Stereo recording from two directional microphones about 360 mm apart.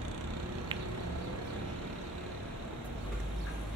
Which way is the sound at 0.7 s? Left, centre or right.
Centre.